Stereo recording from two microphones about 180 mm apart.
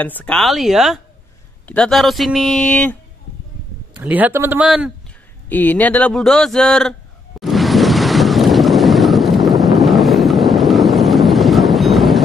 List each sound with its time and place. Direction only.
0.0 s speech: 10° left (ahead or behind)
4.0 s speech: 10° right (ahead or behind)
5.5 s a sound: 10° left (ahead or behind)